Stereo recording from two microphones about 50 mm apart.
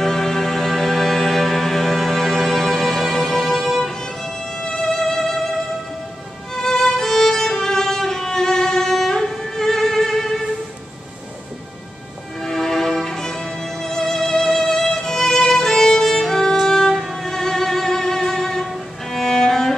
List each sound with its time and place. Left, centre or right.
0.0 s music: centre
3.8 s music: centre
6.5 s music: centre
12.4 s music: centre